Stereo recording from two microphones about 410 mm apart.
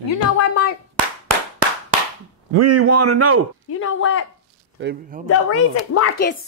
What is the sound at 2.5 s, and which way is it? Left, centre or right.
Speech, right.